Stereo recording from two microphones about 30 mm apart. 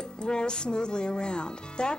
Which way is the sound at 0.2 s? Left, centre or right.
Left.